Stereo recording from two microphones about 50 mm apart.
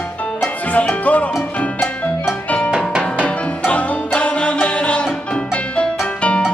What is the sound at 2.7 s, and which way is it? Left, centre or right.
Music, centre.